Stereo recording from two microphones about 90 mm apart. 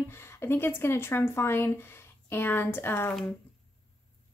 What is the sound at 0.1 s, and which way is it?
Speech, 30° left (ahead or behind).